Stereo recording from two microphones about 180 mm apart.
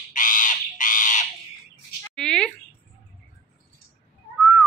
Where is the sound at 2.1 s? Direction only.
5° left (ahead or behind).